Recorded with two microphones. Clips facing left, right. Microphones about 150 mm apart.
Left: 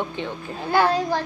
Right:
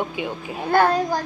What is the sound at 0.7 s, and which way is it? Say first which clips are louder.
Speech: right 2 dB; 50° right (ahead or behind).